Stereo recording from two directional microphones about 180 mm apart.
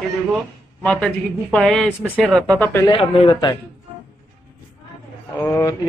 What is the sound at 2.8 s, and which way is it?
Speech, 30° left (ahead or behind).